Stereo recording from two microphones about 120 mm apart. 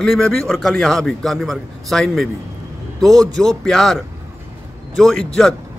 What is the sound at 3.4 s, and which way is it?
A man's voice, 5° left (ahead or behind).